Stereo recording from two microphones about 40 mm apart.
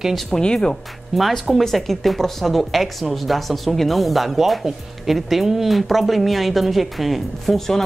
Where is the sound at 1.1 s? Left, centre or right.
Centre.